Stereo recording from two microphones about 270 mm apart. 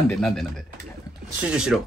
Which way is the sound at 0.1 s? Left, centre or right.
Centre.